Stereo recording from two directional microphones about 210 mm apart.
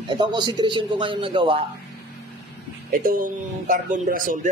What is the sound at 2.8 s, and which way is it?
A man's voice, 40° right (ahead or behind).